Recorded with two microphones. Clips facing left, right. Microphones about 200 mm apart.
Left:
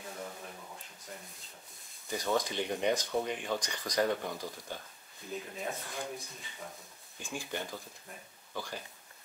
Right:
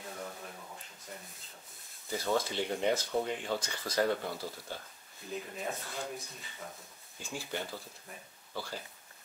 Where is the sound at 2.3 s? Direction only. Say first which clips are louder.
Even; 15° left (ahead or behind).